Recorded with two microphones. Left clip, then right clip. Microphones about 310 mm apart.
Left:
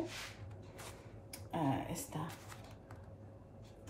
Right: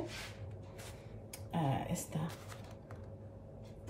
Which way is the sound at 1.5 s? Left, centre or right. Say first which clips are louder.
Even; centre.